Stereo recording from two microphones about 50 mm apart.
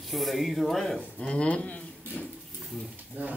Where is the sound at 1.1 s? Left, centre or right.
Left.